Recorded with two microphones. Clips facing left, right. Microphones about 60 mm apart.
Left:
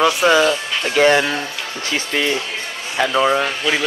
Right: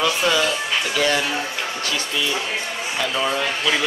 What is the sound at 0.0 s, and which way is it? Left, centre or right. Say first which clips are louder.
Speech: left 6 dB; left.